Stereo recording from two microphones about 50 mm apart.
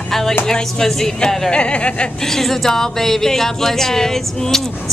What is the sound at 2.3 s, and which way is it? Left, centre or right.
A woman's voice, centre.